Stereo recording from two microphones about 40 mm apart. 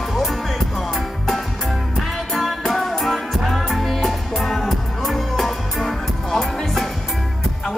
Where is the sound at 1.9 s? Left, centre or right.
Centre.